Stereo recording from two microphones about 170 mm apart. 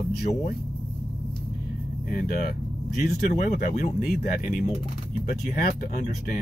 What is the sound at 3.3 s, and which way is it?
Speech, 45° left (ahead or behind).